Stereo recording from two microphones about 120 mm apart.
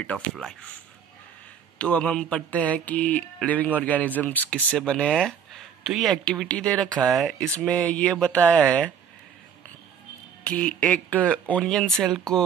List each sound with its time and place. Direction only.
0.4 s speech: 5° left (ahead or behind)
1.8 s speech: 10° left (ahead or behind)
10.4 s speech: 10° left (ahead or behind)